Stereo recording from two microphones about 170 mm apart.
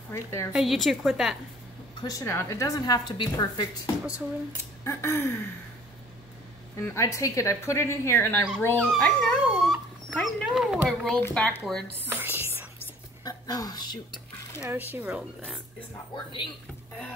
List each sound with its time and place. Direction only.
0.1 s speech: 15° left (ahead or behind)
0.5 s speech: centre (ahead or behind)
2.0 s speech: 20° left (ahead or behind)
6.9 s speech: 20° left (ahead or behind)
8.6 s speech: 5° left (ahead or behind)
9.5 s dog: 5° right (ahead or behind)
10.1 s speech: centre (ahead or behind)
12.1 s music: 10° right (ahead or behind)
13.2 s a sound: 20° left (ahead or behind)
14.7 s speech: 10° right (ahead or behind)